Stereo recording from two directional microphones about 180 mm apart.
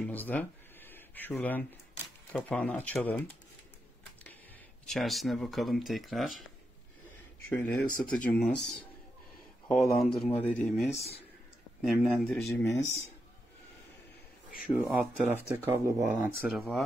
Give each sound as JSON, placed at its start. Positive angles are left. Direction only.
{"t": 0.0, "sound": "a sound", "side_deg": 10}
{"t": 2.3, "sound": "speech", "side_deg": 5}
{"t": 4.8, "sound": "speech", "side_deg": 0}
{"t": 7.5, "sound": "speech", "side_deg": 5}
{"t": 9.9, "sound": "speech", "side_deg": 0}
{"t": 12.4, "sound": "speech", "side_deg": 15}
{"t": 14.7, "sound": "speech", "side_deg": -5}
{"t": 16.5, "sound": "speech", "side_deg": 0}